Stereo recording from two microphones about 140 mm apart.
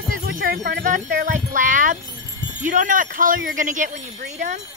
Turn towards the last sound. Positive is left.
turn(degrees=-65)  # may be behind; listen again after turning